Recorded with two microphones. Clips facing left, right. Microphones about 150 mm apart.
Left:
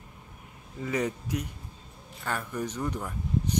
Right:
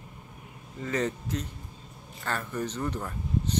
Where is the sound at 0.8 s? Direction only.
10° left (ahead or behind).